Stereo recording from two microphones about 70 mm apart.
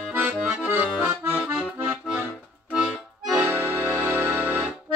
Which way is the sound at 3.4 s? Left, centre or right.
Right.